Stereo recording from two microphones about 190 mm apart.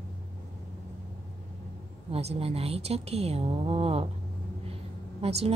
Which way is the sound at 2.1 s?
30° right (ahead or behind).